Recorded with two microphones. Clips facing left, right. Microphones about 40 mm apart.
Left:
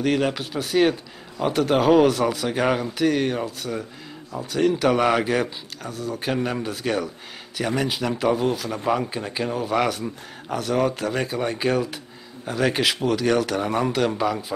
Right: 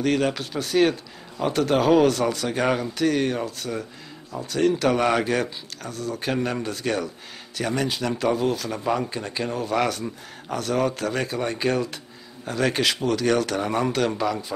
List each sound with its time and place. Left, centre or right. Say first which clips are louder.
0.0 s speech: even; centre